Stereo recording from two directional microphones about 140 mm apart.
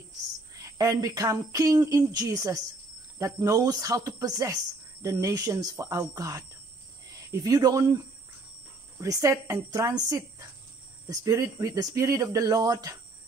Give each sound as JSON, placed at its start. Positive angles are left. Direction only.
{"t": 0.6, "sound": "speech", "side_deg": -25}
{"t": 7.4, "sound": "speech", "side_deg": -25}
{"t": 9.0, "sound": "speech", "side_deg": -20}